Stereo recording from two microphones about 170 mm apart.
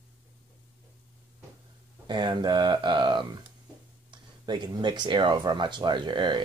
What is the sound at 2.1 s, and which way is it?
Speech, 25° right (ahead or behind).